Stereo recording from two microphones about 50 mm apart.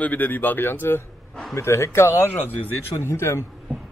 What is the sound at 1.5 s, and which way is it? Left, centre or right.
Speech, left.